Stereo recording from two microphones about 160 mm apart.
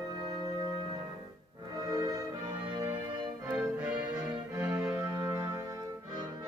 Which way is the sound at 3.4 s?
10° right (ahead or behind).